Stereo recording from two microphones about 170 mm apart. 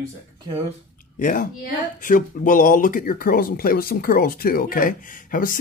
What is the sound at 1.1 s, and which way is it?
Speech, 55° left (ahead or behind).